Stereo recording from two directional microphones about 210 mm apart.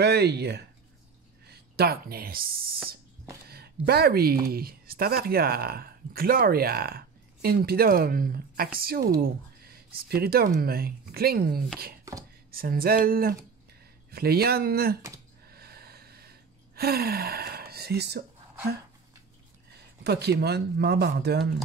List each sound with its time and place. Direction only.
0.0 s speech: 50° right (ahead or behind)
3.4 s speech: 50° right (ahead or behind)
12.0 s chopping: 15° right (ahead or behind)
12.4 s speech: 45° right (ahead or behind)
15.4 s gasp: 45° right (ahead or behind)
20.0 s speech: 50° right (ahead or behind)